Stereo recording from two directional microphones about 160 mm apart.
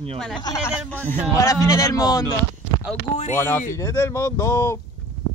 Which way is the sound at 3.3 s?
15° left (ahead or behind).